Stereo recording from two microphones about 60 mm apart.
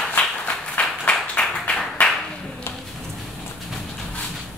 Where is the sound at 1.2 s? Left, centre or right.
Centre.